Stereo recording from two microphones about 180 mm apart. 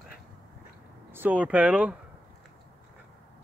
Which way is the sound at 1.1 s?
10° right (ahead or behind).